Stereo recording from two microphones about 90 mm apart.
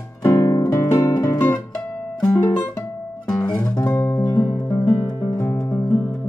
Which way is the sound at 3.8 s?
35° left (ahead or behind).